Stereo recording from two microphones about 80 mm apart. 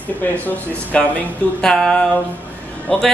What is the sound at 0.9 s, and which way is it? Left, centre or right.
A man's voice, centre.